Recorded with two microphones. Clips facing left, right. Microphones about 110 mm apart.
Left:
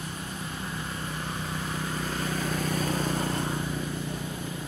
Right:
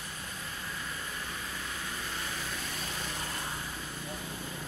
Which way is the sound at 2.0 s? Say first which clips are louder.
Left 8 dB; 45° left (ahead or behind).